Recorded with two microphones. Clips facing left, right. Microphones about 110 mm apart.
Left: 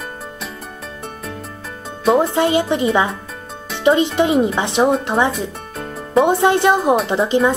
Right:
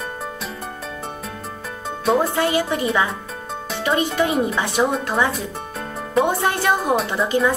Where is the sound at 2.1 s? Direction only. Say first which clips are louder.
Left 4 dB; 25° left (ahead or behind).